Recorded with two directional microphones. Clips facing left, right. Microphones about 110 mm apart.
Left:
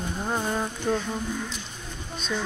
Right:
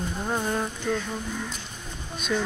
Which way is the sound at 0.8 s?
25° left (ahead or behind).